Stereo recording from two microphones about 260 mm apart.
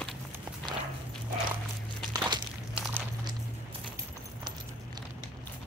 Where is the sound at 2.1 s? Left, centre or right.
Centre.